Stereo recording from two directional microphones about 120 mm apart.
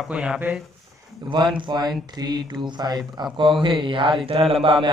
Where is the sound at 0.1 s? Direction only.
10° right (ahead or behind).